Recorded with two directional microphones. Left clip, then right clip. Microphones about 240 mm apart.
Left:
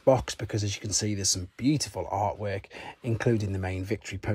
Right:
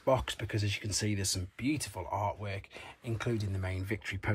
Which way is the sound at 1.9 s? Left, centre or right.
Left.